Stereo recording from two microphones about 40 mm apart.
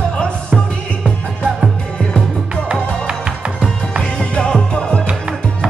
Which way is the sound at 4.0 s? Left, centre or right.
Left.